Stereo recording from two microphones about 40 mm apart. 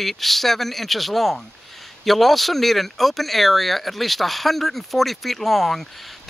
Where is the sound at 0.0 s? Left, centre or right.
Centre.